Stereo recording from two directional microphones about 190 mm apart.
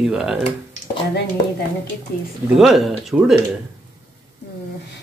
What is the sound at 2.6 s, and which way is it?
Speech, centre (ahead or behind).